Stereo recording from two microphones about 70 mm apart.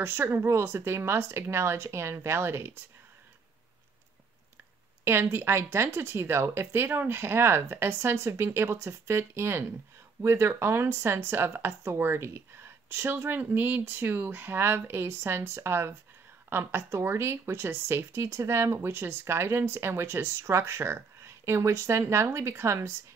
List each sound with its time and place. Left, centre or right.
0.0 s speech: right
5.0 s speech: right